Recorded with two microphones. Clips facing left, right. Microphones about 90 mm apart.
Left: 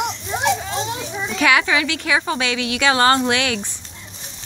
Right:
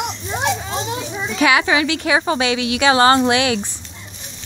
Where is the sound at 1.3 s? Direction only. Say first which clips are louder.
Right 2 dB; 10° right (ahead or behind).